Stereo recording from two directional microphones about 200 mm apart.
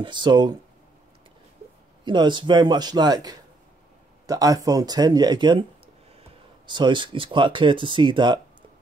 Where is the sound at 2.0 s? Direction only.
25° right (ahead or behind).